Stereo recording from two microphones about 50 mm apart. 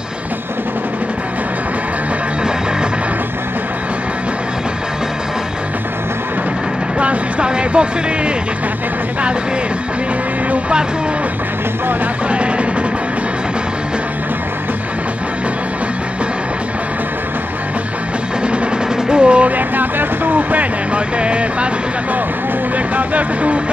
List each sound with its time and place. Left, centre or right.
7.0 s a sound: right
10.5 s vehicle: centre
12.3 s music: right
19.0 s music: centre
22.9 s speech: right